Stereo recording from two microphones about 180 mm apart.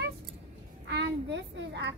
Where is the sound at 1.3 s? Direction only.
80° right.